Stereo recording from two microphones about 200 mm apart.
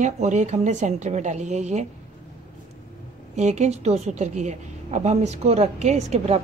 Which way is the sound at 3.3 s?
35° right (ahead or behind).